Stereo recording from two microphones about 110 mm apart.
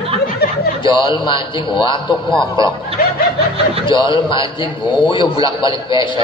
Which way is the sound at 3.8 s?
45° left (ahead or behind).